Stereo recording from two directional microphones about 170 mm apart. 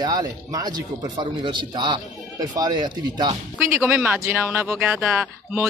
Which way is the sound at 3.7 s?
5° right (ahead or behind).